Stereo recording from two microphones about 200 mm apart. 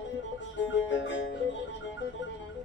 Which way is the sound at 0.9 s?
65° left (ahead or behind).